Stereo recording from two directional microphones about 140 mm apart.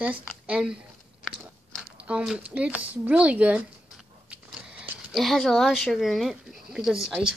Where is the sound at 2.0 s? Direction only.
5° right (ahead or behind).